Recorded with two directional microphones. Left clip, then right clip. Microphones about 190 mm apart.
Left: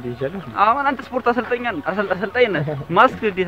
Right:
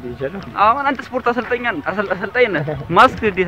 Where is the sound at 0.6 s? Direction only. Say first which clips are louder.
Right 2 dB; 15° right (ahead or behind).